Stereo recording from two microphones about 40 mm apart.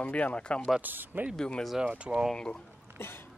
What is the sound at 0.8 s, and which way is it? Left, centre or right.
Speech, right.